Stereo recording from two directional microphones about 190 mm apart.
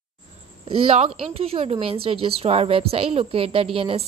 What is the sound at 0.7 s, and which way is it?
A woman's voice, 30° right (ahead or behind).